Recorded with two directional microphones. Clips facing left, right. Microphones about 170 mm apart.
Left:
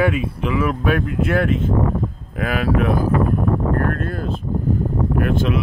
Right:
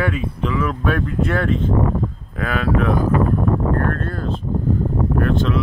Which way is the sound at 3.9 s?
10° left (ahead or behind).